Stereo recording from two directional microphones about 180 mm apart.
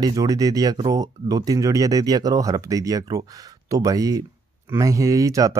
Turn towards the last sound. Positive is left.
turn(degrees=-20)  # may be behind; listen again after turning